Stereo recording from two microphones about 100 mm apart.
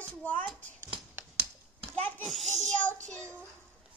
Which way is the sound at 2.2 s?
Centre (ahead or behind).